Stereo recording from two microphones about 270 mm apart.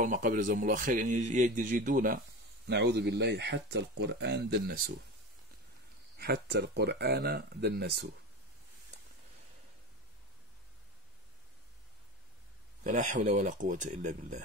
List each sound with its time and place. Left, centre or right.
0.0 s a man's voice: right
6.1 s speech: right
12.8 s a man's voice: right